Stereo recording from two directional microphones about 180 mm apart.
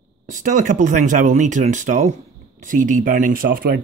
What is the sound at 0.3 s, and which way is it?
Speech, 45° right (ahead or behind).